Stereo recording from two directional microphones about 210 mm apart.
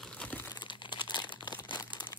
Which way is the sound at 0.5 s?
20° left (ahead or behind).